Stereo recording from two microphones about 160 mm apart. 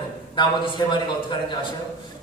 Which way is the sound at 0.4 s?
30° left (ahead or behind).